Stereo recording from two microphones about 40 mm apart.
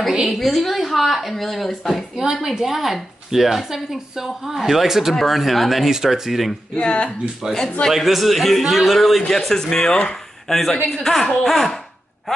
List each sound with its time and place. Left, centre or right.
0.3 s a woman's voice: centre
2.1 s a woman's voice: centre
5.9 s speech: centre
6.7 s speech: left
7.9 s a woman's voice: centre
9.5 s a woman's voice: centre
10.5 s a woman's voice: centre